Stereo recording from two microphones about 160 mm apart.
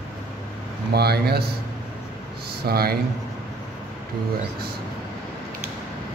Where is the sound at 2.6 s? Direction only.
75° right (ahead or behind).